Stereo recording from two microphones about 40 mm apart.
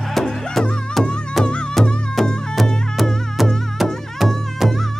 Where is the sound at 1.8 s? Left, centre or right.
Left.